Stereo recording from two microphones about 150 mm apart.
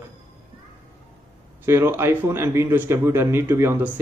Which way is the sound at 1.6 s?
15° right (ahead or behind).